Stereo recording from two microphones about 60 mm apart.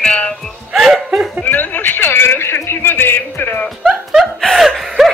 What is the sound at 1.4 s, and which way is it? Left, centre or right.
A man's voice, left.